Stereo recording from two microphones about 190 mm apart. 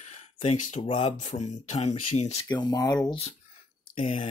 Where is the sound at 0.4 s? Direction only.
35° left (ahead or behind).